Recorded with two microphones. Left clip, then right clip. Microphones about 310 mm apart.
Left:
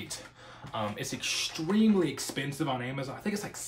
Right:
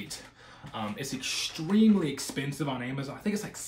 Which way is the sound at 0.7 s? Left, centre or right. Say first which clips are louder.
Left 1 dB; centre.